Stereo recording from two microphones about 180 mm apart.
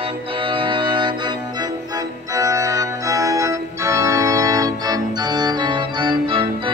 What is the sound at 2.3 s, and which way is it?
Organ, 20° right (ahead or behind).